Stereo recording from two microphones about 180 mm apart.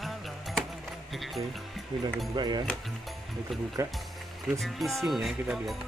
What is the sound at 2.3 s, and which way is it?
Speech, 25° right (ahead or behind).